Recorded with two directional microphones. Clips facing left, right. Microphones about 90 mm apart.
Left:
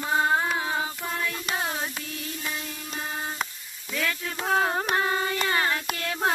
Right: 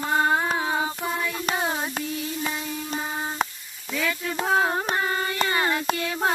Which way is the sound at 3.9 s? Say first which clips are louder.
Right 3 dB; 5° right (ahead or behind).